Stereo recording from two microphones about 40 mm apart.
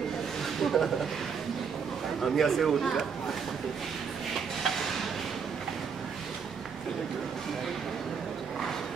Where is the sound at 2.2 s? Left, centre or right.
Centre.